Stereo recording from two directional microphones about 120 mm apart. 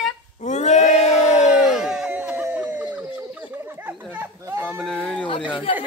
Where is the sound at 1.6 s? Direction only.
5° right (ahead or behind).